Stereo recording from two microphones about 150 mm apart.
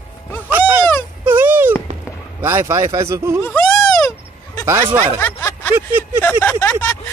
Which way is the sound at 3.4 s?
5° left (ahead or behind).